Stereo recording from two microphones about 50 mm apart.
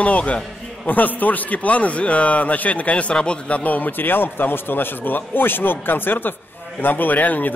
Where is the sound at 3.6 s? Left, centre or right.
Left.